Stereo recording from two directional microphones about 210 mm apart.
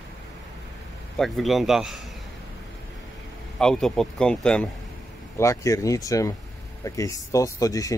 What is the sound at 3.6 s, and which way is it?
Speech, centre (ahead or behind).